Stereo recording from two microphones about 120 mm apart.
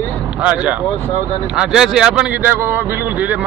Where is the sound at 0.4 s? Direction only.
10° right (ahead or behind).